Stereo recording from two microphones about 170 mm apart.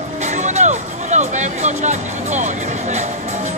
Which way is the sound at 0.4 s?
45° right (ahead or behind).